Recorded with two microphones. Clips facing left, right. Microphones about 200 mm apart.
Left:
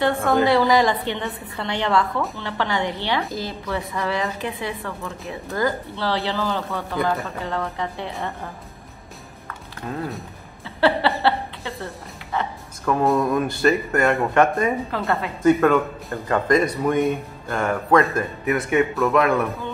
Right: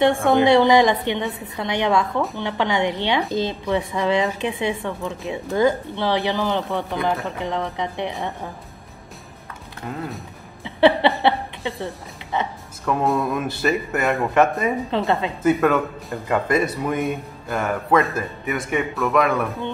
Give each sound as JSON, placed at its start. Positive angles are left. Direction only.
{"t": 0.3, "sound": "a woman's voice", "side_deg": -20}
{"t": 10.6, "sound": "a sound", "side_deg": -20}
{"t": 11.2, "sound": "a woman's voice", "side_deg": -20}
{"t": 12.8, "sound": "speech", "side_deg": 0}
{"t": 14.9, "sound": "a woman's voice", "side_deg": -20}
{"t": 15.4, "sound": "speech", "side_deg": -5}